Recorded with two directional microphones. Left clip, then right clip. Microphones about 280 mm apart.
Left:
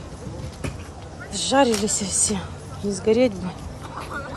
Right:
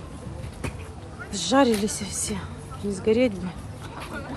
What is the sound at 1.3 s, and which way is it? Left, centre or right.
A woman's voice, centre.